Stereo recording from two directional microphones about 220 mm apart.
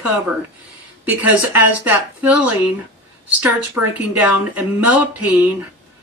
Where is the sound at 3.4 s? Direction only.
5° right (ahead or behind).